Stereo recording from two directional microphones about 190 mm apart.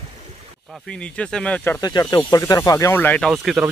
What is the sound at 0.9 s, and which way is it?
Speech, 5° left (ahead or behind).